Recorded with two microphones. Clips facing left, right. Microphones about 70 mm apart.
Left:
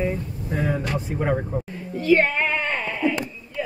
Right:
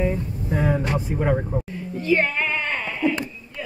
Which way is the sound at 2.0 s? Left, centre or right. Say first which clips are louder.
Left 3 dB; left.